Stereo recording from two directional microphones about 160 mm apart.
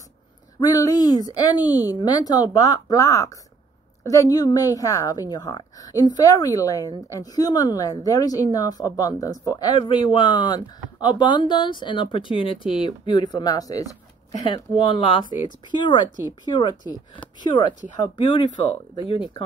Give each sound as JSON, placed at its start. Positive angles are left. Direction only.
{"t": 0.6, "sound": "speech", "side_deg": 20}
{"t": 14.4, "sound": "speech", "side_deg": 30}